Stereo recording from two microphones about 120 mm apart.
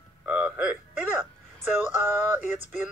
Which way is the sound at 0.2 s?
15° right (ahead or behind).